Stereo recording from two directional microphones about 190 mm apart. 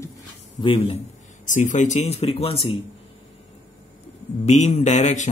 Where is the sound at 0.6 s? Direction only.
30° left (ahead or behind).